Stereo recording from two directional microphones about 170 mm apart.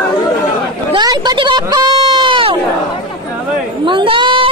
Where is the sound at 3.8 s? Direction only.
30° right (ahead or behind).